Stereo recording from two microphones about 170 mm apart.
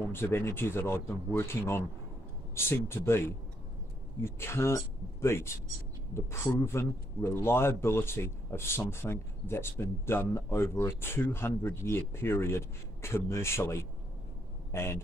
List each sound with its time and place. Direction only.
0.1 s a man's voice: 15° left (ahead or behind)